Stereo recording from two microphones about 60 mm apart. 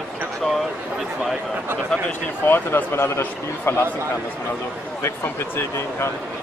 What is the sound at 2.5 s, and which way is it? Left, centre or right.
A man's voice, left.